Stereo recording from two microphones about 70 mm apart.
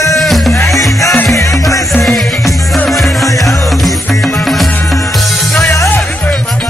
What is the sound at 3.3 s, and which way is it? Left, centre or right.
Music, left.